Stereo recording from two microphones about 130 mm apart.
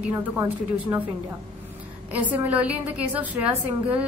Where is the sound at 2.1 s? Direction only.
10° right (ahead or behind).